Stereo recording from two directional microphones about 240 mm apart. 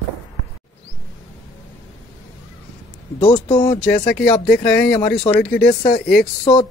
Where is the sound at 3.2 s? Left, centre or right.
Left.